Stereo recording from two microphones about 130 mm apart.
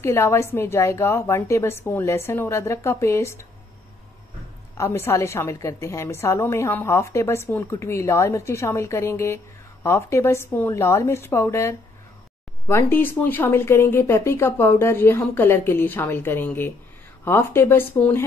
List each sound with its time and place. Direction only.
0.0 s a woman's voice: 20° left (ahead or behind)
4.7 s a woman's voice: 20° left (ahead or behind)